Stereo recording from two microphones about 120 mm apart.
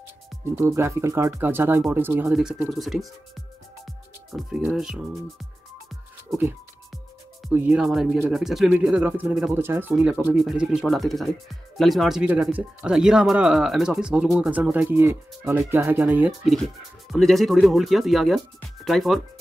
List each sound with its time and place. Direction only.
0.6 s speech: 25° right (ahead or behind)
2.3 s speech: 5° right (ahead or behind)
3.8 s music: centre (ahead or behind)
7.5 s speech: 10° right (ahead or behind)
16.3 s speech: centre (ahead or behind)